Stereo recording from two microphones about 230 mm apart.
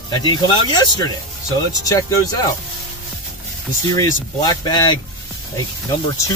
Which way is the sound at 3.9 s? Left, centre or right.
Centre.